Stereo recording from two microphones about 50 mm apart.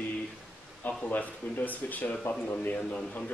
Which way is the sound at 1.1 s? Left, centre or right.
Left.